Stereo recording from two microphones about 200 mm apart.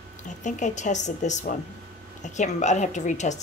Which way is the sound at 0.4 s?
40° left (ahead or behind).